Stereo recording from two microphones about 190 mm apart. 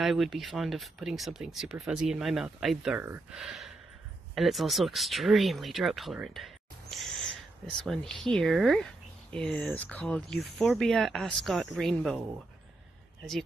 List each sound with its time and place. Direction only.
0.0 s speech: centre (ahead or behind)